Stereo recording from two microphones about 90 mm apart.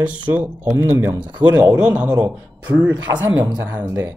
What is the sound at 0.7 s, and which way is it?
Speech, 30° right (ahead or behind).